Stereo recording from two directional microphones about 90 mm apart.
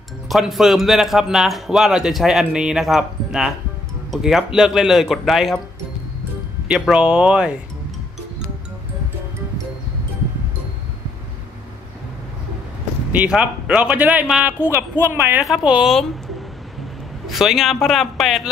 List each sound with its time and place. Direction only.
0.3 s speech: centre (ahead or behind)
6.7 s a man's voice: 10° right (ahead or behind)
13.1 s a man's voice: 15° right (ahead or behind)
17.3 s speech: centre (ahead or behind)